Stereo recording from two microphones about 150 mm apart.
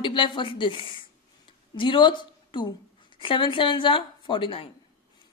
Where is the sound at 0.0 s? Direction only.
35° left (ahead or behind).